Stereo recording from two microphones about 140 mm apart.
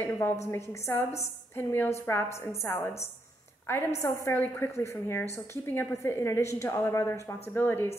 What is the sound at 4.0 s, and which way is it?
A woman's voice, 20° left (ahead or behind).